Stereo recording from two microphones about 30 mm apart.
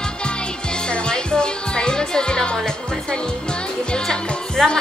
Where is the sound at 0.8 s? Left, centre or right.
Left.